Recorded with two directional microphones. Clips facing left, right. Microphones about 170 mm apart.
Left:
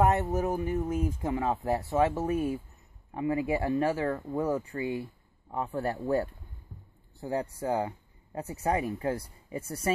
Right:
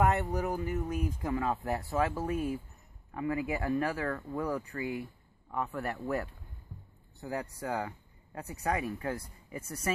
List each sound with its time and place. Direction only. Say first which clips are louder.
0.0 s speech: left 3 dB; 25° left (ahead or behind)